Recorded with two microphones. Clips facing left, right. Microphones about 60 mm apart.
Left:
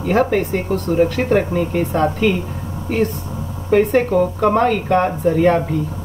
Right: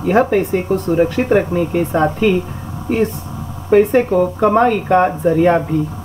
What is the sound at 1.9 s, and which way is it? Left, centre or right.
Speech, right.